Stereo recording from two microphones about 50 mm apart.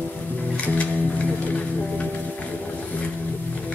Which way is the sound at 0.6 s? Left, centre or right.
Left.